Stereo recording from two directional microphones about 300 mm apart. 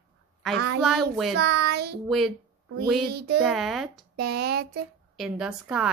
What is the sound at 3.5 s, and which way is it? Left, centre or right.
Speech, centre.